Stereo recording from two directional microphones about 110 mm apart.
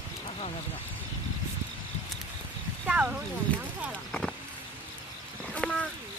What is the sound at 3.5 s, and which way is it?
Speech, 15° left (ahead or behind).